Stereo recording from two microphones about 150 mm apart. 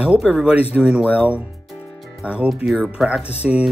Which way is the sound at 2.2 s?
5° right (ahead or behind).